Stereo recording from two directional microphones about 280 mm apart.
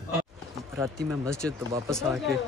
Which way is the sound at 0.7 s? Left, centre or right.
Centre.